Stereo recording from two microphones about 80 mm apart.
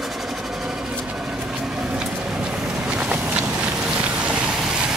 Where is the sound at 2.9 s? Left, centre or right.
Centre.